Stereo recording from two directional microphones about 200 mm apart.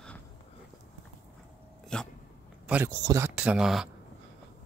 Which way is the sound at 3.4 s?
5° right (ahead or behind).